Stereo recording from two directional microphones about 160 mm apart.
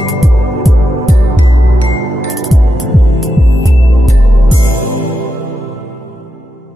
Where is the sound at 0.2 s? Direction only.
Centre (ahead or behind).